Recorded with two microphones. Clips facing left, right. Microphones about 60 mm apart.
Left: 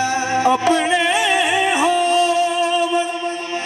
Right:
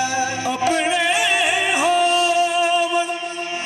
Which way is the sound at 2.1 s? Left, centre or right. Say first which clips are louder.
Left 2 dB; left.